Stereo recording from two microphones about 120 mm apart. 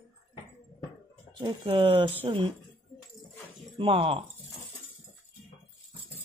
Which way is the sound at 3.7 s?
50° right (ahead or behind).